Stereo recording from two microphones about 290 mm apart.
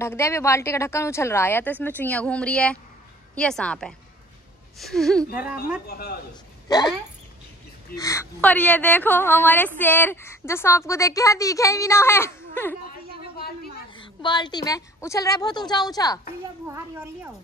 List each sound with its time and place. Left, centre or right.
0.0 s a woman's voice: centre
5.9 s a man's voice: left
6.7 s a woman's voice: centre
7.9 s a woman's voice: centre
12.8 s a sound: left
13.9 s a woman's voice: centre
16.6 s speech: centre